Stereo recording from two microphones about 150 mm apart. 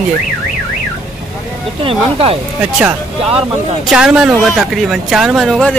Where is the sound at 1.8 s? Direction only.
40° right (ahead or behind).